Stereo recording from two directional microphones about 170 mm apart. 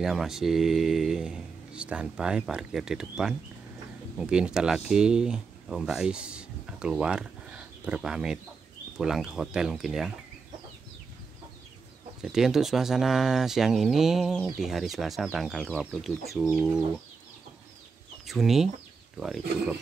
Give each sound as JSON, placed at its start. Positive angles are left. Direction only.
{"t": 0.0, "sound": "speech", "side_deg": 0}
{"t": 12.2, "sound": "speech", "side_deg": -5}
{"t": 18.2, "sound": "speech", "side_deg": 0}